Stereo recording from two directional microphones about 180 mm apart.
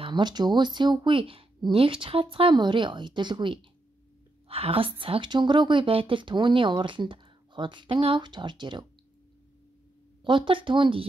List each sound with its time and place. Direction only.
0.0 s a woman's voice: 25° right (ahead or behind)
10.2 s a woman's voice: 30° right (ahead or behind)